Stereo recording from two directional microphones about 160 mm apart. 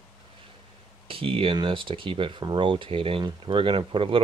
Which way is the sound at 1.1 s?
35° right (ahead or behind).